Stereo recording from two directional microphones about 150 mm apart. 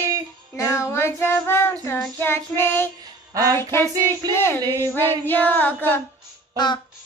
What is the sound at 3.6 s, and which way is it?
Child singing, 15° left (ahead or behind).